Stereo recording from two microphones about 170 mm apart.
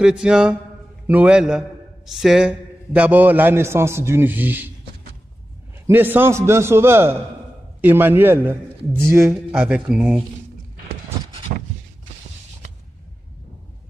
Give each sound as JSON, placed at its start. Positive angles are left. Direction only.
{"t": 0.0, "sound": "a man's voice", "side_deg": -5}
{"t": 5.9, "sound": "a man's voice", "side_deg": -10}
{"t": 11.5, "sound": "a sound", "side_deg": -40}